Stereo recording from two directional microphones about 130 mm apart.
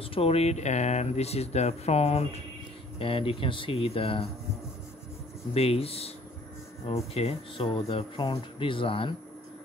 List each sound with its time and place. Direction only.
0.0 s speech: 45° left (ahead or behind)
5.5 s speech: 50° left (ahead or behind)
7.2 s speech: 50° left (ahead or behind)
8.2 s speech: 35° left (ahead or behind)